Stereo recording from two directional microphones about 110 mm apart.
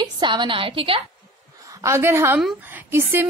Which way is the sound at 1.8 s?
25° right (ahead or behind).